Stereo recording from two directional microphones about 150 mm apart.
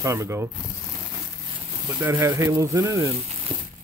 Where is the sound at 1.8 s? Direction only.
20° right (ahead or behind).